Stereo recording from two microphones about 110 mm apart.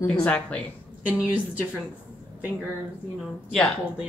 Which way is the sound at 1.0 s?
15° right (ahead or behind).